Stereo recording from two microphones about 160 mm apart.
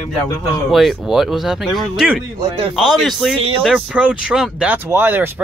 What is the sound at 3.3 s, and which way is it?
Speech, 35° right (ahead or behind).